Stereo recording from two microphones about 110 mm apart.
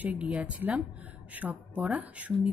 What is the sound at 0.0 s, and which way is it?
A woman's voice, 15° right (ahead or behind).